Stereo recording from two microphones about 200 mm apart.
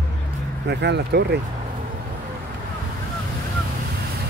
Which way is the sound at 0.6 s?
60° right (ahead or behind).